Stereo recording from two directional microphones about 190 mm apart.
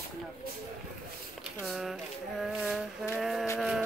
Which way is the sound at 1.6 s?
Centre (ahead or behind).